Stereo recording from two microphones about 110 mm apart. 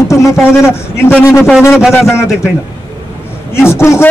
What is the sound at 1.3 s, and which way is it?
Speech, 5° right (ahead or behind).